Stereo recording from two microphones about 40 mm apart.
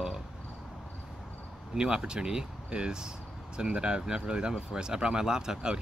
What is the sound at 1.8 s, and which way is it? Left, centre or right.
Speech, centre.